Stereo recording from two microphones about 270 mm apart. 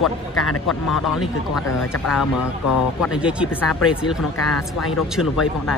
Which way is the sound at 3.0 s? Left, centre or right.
Centre.